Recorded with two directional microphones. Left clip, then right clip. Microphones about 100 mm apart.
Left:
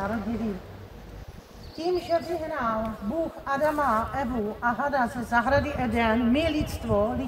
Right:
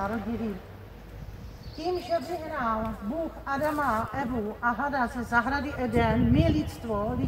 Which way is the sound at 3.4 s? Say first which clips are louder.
Left 3 dB; 45° left (ahead or behind).